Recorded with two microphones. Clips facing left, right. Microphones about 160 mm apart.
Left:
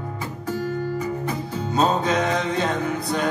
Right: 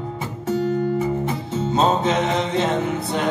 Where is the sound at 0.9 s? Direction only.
25° right (ahead or behind).